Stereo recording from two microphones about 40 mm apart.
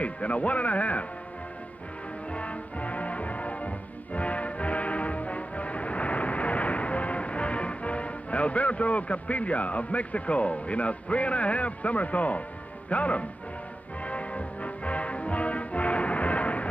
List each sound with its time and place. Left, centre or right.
0.0 s speech: left
2.3 s music: left
12.9 s speech: left
14.0 s music: left